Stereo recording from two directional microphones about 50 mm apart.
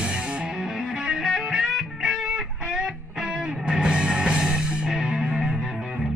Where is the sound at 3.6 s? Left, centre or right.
Centre.